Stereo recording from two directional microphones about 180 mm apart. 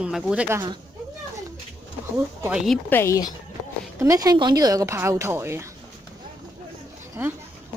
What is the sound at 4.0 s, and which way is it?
Speech, 20° right (ahead or behind).